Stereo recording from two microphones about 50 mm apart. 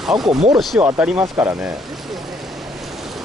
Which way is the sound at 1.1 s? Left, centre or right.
Right.